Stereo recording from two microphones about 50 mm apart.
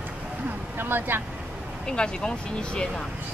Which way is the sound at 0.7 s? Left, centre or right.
Right.